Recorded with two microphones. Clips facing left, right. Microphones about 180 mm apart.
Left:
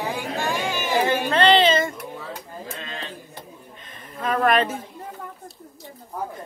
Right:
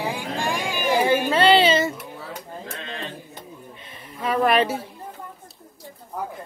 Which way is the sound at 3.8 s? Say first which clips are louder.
Even; 10° right (ahead or behind).